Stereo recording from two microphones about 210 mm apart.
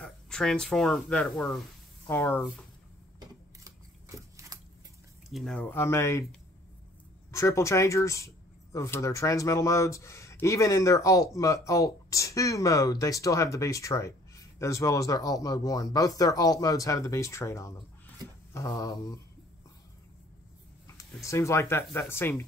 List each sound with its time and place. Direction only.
0.0 s speech: 5° left (ahead or behind)
3.2 s a sound: 15° right (ahead or behind)
5.3 s speech: centre (ahead or behind)
7.2 s speech: 15° left (ahead or behind)
18.2 s a sound: 15° left (ahead or behind)
20.8 s speech: 15° left (ahead or behind)